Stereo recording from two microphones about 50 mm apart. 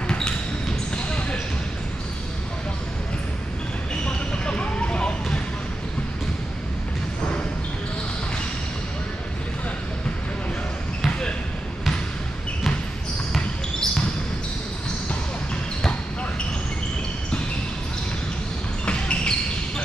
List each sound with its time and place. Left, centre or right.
0.1 s basketball bounce: centre
3.9 s basketball bounce: left
13.3 s basketball bounce: centre
18.9 s basketball bounce: left